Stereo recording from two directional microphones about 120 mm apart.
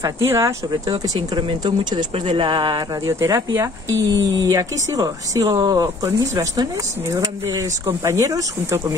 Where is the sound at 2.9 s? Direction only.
25° right (ahead or behind).